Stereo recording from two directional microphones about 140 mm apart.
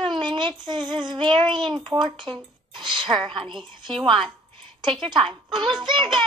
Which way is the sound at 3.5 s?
35° right (ahead or behind).